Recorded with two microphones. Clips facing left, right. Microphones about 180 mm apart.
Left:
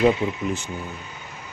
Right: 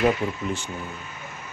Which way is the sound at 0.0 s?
20° left (ahead or behind).